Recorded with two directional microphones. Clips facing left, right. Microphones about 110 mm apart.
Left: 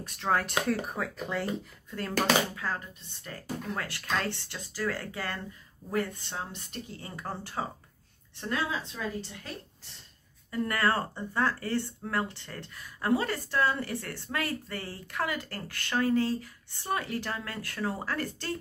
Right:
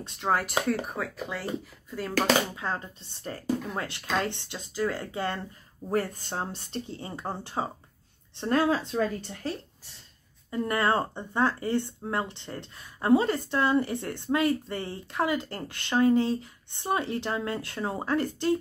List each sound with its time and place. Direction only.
0.3 s speech: 5° right (ahead or behind)
2.5 s speech: 25° right (ahead or behind)
5.9 s speech: 40° right (ahead or behind); by 7.6 s 20° right (ahead or behind)
8.5 s speech: 50° right (ahead or behind)
10.5 s speech: 20° right (ahead or behind)